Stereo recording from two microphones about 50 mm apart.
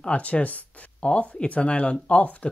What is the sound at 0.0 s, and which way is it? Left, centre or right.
Speech, left.